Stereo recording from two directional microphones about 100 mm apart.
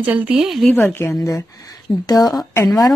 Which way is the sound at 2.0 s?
40° left (ahead or behind).